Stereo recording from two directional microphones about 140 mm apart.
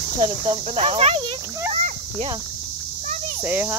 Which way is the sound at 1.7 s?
50° right (ahead or behind).